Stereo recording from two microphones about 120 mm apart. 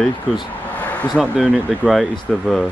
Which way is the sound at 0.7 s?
10° left (ahead or behind).